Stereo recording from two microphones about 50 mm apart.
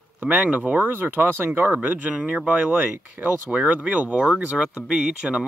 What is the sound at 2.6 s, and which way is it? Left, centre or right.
Speech, right.